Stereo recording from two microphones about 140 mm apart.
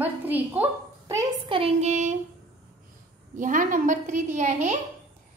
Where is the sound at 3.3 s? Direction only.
70° right (ahead or behind).